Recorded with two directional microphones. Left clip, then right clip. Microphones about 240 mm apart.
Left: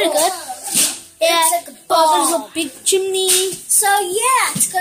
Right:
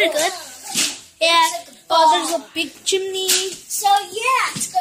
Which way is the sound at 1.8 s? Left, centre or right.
Centre.